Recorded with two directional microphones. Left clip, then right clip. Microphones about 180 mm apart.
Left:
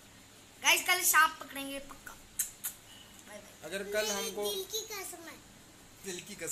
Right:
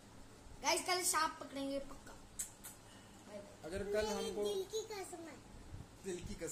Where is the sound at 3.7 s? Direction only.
10° left (ahead or behind).